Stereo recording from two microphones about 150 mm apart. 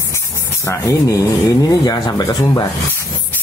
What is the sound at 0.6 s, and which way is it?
Speech, 20° left (ahead or behind).